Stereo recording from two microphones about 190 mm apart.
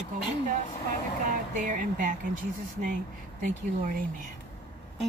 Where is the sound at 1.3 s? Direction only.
45° right (ahead or behind).